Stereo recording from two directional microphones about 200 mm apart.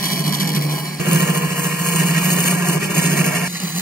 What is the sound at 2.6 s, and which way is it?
Vehicle, 10° right (ahead or behind).